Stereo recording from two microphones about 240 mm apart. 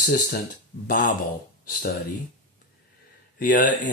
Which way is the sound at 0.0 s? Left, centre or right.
Left.